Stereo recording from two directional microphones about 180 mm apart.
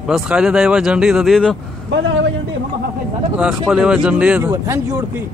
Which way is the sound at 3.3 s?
5° right (ahead or behind).